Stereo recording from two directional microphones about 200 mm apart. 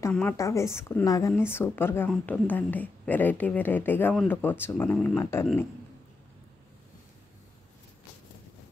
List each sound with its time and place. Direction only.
0.1 s a woman's voice: 10° left (ahead or behind)